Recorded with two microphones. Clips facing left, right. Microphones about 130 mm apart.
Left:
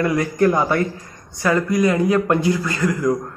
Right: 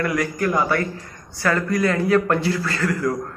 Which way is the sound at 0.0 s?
25° left (ahead or behind).